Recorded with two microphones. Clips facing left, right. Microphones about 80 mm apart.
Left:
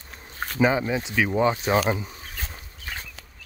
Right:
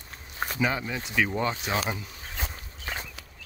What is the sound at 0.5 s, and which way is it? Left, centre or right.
Speech, left.